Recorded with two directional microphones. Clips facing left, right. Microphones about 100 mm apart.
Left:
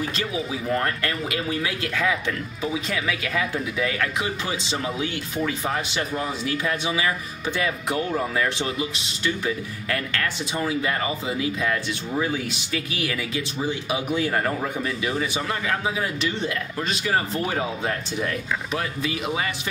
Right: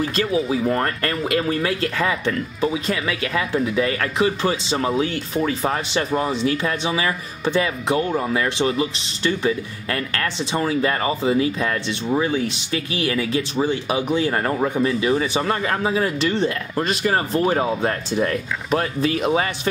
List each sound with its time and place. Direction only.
0.1 s speech: 45° right (ahead or behind)
16.7 s speech: 50° right (ahead or behind)